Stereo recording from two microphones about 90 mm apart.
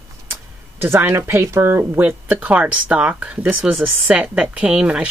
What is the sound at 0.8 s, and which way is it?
Speech, 25° right (ahead or behind).